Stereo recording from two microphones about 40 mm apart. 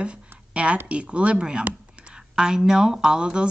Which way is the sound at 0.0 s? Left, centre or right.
Right.